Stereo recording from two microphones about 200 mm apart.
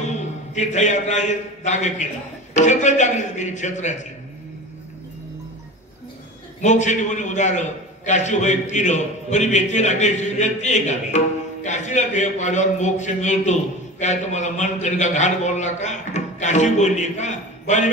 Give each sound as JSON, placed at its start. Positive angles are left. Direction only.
{"t": 0.1, "sound": "a man's voice", "side_deg": 35}
{"t": 6.6, "sound": "a man's voice", "side_deg": 35}